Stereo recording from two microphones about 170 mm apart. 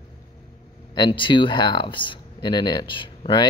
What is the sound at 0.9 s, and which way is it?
Speech, 25° left (ahead or behind).